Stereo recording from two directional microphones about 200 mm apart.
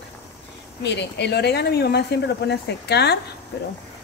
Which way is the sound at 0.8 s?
60° left (ahead or behind).